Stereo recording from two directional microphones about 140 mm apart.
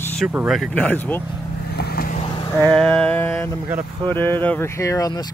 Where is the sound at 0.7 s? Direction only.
10° left (ahead or behind).